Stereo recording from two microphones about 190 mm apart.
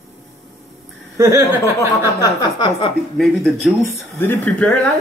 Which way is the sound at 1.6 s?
15° left (ahead or behind).